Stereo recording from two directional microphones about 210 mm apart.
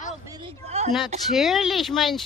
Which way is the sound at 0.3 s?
25° right (ahead or behind).